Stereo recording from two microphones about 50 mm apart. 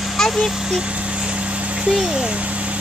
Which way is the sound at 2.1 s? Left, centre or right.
Centre.